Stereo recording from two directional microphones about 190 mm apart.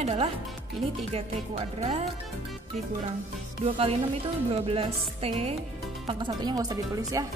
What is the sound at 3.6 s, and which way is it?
A woman's voice, 30° right (ahead or behind).